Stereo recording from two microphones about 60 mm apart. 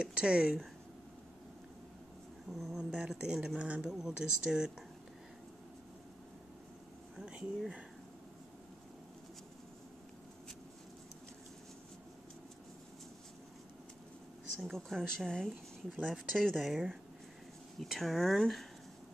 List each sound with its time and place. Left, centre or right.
0.0 s speech: centre
2.5 s speech: centre
2.9 s speech: centre
7.2 s a sound: centre
14.7 s speech: centre